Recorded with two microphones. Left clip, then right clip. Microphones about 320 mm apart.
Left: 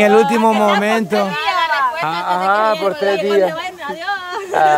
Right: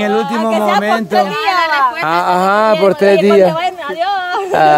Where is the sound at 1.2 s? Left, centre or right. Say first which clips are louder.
Right 3 dB; centre.